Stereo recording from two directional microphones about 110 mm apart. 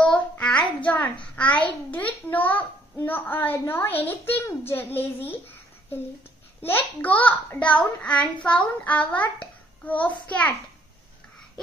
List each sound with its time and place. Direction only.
0.0 s child singing: 10° left (ahead or behind)
0.8 s a child's voice: 10° left (ahead or behind)
6.6 s a child's voice: 20° left (ahead or behind)